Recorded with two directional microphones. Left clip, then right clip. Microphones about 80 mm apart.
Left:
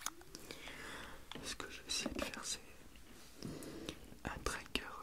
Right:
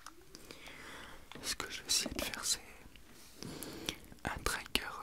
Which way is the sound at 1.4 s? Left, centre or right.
Right.